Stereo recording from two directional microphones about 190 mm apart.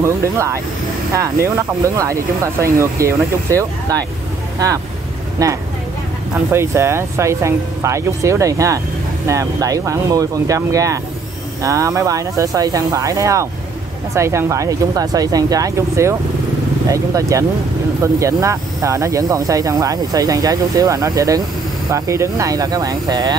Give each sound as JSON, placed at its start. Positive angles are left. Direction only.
{"t": 0.0, "sound": "speech", "side_deg": -15}
{"t": 5.4, "sound": "speech", "side_deg": -15}